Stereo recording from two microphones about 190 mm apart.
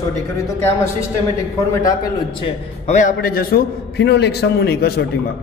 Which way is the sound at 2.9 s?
40° left (ahead or behind).